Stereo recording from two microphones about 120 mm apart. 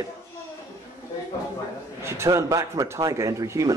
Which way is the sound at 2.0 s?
20° right (ahead or behind).